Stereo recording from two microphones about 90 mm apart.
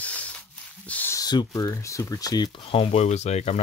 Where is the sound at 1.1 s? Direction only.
50° left (ahead or behind).